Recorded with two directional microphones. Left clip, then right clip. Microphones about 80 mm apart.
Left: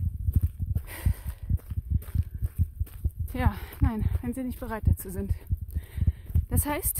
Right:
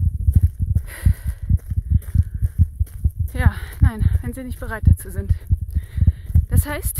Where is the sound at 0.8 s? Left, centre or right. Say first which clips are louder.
Right 6 dB; left.